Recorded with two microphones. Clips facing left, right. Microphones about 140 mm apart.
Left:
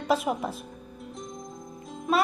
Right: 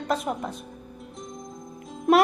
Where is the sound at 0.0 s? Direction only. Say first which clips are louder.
Left 2 dB; 5° left (ahead or behind).